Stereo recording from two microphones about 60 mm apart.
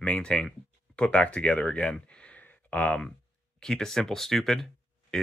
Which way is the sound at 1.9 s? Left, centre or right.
Centre.